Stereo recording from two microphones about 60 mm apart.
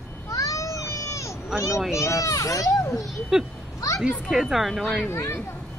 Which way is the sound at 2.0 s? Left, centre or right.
Left.